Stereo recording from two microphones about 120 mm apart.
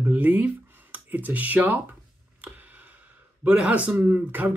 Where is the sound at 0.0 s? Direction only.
15° right (ahead or behind).